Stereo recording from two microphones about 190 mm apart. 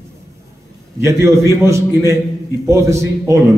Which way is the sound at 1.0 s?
15° right (ahead or behind).